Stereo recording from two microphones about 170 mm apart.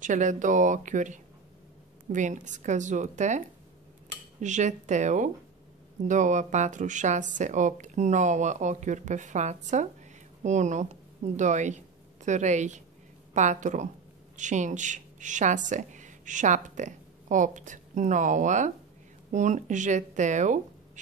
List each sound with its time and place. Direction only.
0.0 s a woman's voice: 45° right (ahead or behind)